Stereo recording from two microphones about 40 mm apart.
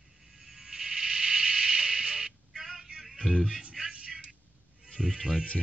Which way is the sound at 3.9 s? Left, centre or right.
Right.